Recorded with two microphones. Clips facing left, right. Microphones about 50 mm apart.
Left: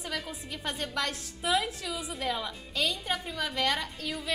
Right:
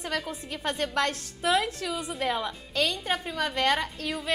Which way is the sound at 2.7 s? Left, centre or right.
Right.